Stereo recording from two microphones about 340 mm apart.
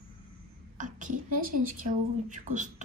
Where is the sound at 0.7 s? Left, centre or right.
Right.